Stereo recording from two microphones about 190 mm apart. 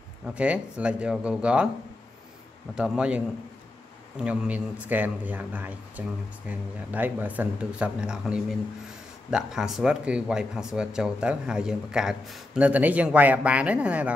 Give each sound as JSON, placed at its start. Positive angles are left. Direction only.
{"t": 0.3, "sound": "speech", "side_deg": -5}
{"t": 2.7, "sound": "speech", "side_deg": -5}
{"t": 4.2, "sound": "speech", "side_deg": -5}